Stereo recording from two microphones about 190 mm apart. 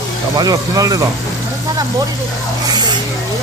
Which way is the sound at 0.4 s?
20° right (ahead or behind).